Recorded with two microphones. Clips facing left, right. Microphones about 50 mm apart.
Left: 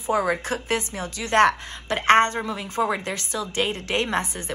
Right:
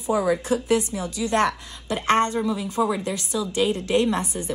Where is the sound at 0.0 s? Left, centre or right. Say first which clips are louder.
Right 1 dB; left.